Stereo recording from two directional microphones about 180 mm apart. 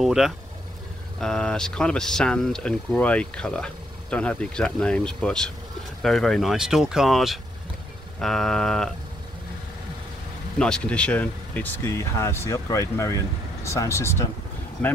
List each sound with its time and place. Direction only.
0.0 s vehicle: centre (ahead or behind)
1.2 s speech: 5° left (ahead or behind)
10.6 s speech: 5° left (ahead or behind)